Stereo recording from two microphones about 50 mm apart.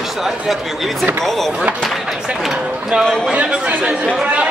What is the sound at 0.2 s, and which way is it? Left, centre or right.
Speech, centre.